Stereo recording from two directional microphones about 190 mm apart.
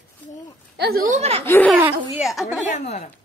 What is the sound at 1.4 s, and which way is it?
Speech, 10° left (ahead or behind).